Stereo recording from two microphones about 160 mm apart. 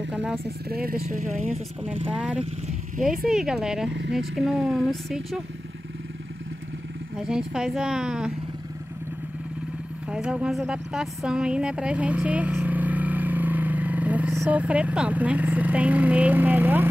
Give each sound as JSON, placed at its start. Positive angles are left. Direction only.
{"t": 0.1, "sound": "speech", "side_deg": -5}
{"t": 0.7, "sound": "speech", "side_deg": -70}
{"t": 2.1, "sound": "speech", "side_deg": -5}
{"t": 7.2, "sound": "speech", "side_deg": -5}
{"t": 10.0, "sound": "speech", "side_deg": -5}